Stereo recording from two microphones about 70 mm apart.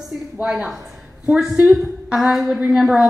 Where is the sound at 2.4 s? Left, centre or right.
Centre.